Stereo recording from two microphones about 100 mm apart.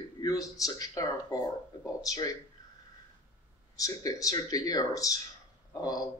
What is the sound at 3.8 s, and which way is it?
Speech, 35° left (ahead or behind).